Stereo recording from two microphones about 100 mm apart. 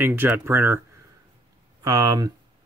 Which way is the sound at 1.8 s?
35° right (ahead or behind).